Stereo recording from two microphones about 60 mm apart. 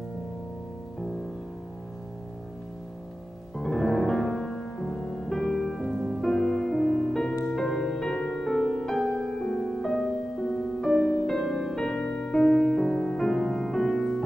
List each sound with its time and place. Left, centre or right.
3.5 s music: centre
6.2 s music: centre